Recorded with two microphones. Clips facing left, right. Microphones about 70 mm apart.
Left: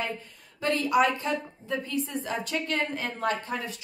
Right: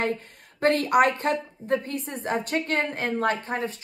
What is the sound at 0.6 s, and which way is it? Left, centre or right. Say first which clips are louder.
A woman's voice: right 4 dB; right.